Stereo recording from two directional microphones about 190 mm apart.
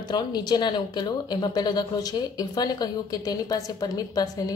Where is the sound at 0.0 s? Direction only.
20° left (ahead or behind).